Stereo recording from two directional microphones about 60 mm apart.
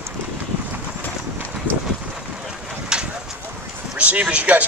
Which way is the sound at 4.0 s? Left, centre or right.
Right.